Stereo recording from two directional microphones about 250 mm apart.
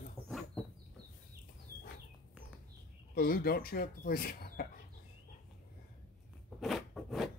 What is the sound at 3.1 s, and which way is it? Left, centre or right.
Speech, left.